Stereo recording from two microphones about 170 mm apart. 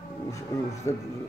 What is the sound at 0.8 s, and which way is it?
Speech, 15° left (ahead or behind).